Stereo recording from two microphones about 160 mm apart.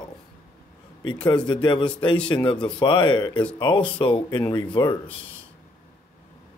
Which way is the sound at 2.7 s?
30° left (ahead or behind).